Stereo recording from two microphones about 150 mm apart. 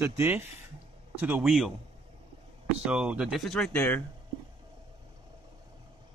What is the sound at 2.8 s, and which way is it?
Speech, 5° right (ahead or behind).